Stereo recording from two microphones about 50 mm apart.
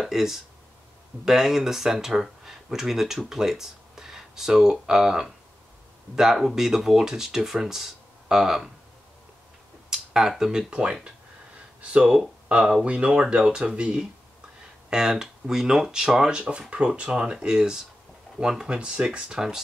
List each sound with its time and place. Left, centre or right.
0.0 s speech: centre
9.8 s a sound: centre
10.7 s speech: right